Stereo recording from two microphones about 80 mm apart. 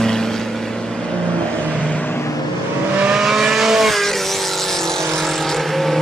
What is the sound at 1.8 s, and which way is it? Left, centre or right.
Vehicle, centre.